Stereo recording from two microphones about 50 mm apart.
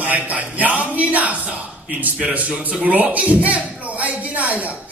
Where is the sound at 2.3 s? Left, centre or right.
Right.